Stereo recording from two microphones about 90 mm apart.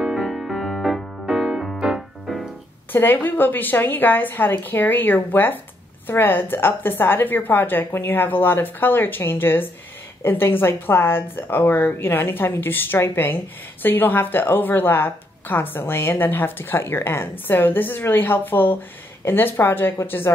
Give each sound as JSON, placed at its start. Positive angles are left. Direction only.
{"t": 0.0, "sound": "music", "side_deg": -5}
{"t": 1.2, "sound": "keyboard", "side_deg": -5}
{"t": 2.9, "sound": "a woman's voice", "side_deg": 20}